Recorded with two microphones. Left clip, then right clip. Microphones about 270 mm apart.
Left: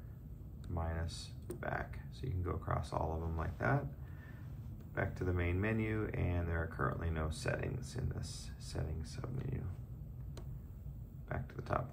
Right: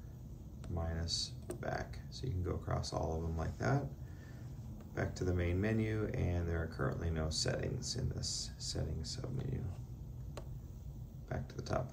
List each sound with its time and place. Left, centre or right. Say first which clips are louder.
0.7 s a sound: left 1 dB; centre
1.5 s speech: left 5 dB; centre
4.9 s speech: even; centre
11.2 s speech: left 1 dB; centre